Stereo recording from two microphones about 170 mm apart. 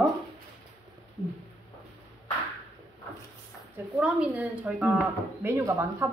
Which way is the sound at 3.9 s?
5° right (ahead or behind).